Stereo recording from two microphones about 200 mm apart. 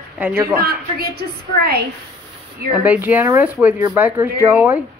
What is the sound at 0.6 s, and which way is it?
A woman's voice, 50° right (ahead or behind).